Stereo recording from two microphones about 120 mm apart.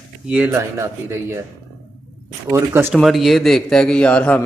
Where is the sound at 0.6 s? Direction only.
20° right (ahead or behind).